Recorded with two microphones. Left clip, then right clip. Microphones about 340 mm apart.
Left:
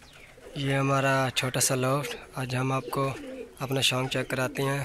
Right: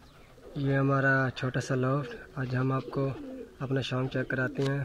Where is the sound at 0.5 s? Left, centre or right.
Centre.